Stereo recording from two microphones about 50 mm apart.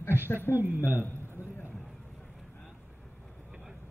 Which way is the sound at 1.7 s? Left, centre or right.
Centre.